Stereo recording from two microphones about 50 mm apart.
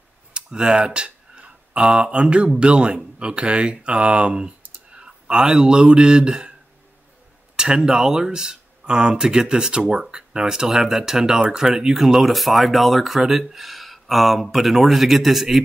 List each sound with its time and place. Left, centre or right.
0.3 s speech: centre
7.5 s speech: centre